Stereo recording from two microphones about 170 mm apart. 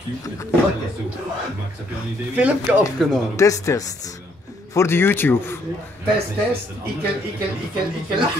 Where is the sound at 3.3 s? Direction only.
20° left (ahead or behind).